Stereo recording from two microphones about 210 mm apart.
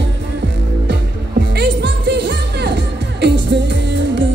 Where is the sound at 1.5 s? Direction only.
50° right (ahead or behind).